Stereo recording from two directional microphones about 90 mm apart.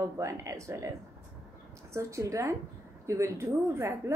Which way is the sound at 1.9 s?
35° right (ahead or behind).